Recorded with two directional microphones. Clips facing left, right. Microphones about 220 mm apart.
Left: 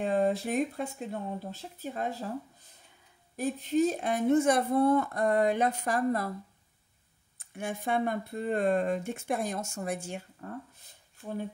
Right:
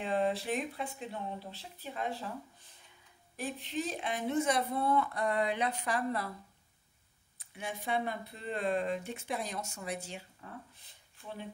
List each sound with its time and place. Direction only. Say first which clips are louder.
0.0 s speech: left 5 dB; 45° left (ahead or behind)
3.3 s speech: left 10 dB; 40° left (ahead or behind)
7.3 s speech: left 5 dB; 50° left (ahead or behind)